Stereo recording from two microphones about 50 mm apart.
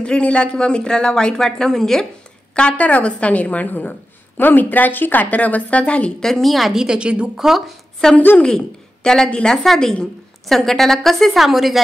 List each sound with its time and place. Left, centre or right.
0.0 s speech: left
2.5 s a woman's voice: left
6.2 s a woman's voice: centre
6.7 s a woman's voice: centre
7.4 s a woman's voice: centre
8.0 s a woman's voice: centre